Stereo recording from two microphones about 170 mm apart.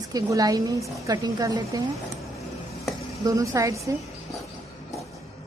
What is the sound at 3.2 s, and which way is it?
Speech, 20° right (ahead or behind).